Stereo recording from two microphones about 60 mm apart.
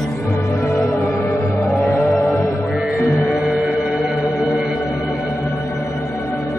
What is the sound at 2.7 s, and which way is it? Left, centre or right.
Music, centre.